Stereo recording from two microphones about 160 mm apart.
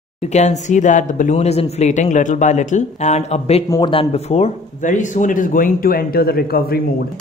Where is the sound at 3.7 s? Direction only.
30° left (ahead or behind); by 6.8 s 70° left (ahead or behind).